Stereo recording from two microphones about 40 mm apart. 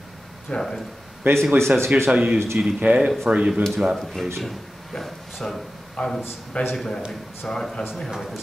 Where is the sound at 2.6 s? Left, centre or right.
Right.